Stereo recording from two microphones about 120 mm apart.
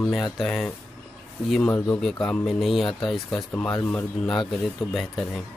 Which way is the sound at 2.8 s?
45° left (ahead or behind).